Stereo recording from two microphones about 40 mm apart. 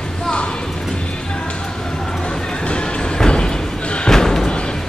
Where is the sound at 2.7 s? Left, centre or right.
Left.